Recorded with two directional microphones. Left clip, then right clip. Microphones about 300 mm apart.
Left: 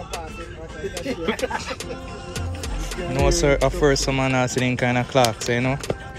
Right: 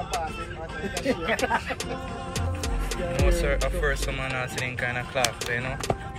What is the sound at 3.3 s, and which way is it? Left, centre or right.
Speech, centre.